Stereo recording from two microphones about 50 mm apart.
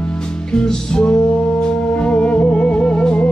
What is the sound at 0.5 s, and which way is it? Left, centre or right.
Music, centre.